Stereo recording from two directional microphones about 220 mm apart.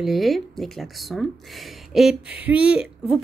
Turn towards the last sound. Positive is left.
turn(degrees=-5)  # may be behind; listen again after turning